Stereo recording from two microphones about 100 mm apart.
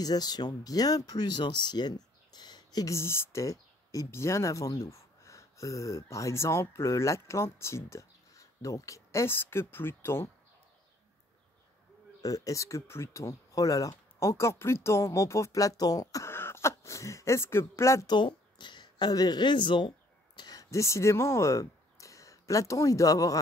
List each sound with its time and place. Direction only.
0.0 s speech: 40° left (ahead or behind)
2.9 s speech: 25° left (ahead or behind)
12.2 s speech: 35° left (ahead or behind)
16.3 s speech: 25° left (ahead or behind)
18.0 s speech: 50° left (ahead or behind)
20.3 s speech: 40° left (ahead or behind)